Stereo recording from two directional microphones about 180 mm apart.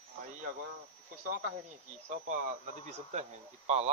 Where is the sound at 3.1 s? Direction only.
40° right (ahead or behind).